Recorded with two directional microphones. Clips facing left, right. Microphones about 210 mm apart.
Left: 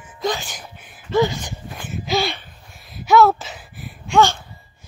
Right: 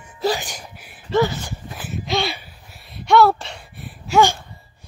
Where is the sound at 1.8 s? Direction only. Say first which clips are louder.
Left 1 dB; centre (ahead or behind).